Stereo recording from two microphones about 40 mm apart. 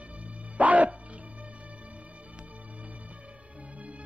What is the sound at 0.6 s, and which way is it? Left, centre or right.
Music, right.